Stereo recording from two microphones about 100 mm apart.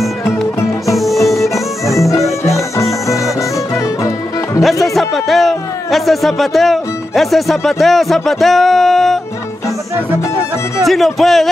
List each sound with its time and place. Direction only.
0.8 s music: centre (ahead or behind)
4.8 s speech: centre (ahead or behind)
10.9 s speech: centre (ahead or behind)